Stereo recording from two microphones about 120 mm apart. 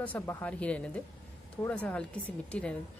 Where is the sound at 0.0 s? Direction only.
15° left (ahead or behind).